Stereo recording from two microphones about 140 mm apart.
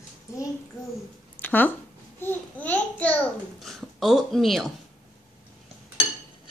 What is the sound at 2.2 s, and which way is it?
Babbling, 10° left (ahead or behind).